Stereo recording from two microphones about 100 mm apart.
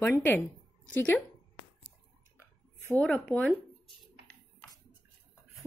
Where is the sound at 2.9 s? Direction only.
10° left (ahead or behind).